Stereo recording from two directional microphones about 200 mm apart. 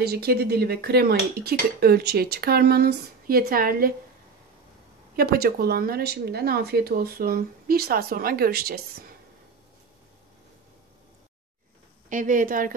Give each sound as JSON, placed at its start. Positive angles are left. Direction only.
{"t": 0.0, "sound": "speech", "side_deg": -50}
{"t": 5.1, "sound": "speech", "side_deg": -50}
{"t": 12.1, "sound": "a woman's voice", "side_deg": -40}